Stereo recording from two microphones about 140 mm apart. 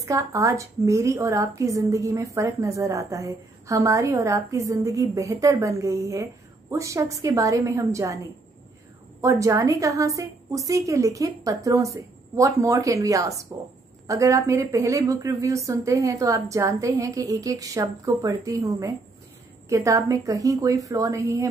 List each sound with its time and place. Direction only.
0.0 s speech: 25° right (ahead or behind)
9.2 s speech: 20° right (ahead or behind)